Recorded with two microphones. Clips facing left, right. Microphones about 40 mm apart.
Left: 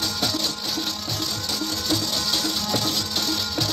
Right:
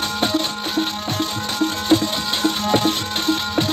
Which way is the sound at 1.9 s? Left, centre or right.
Right.